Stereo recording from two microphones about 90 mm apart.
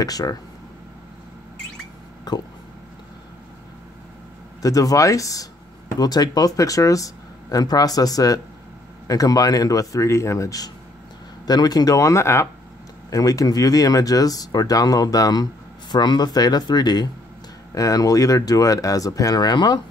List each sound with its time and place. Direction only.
0.0 s speech: 45° left (ahead or behind)
2.3 s speech: 50° left (ahead or behind)
4.6 s speech: 40° left (ahead or behind)
15.9 s speech: 55° left (ahead or behind)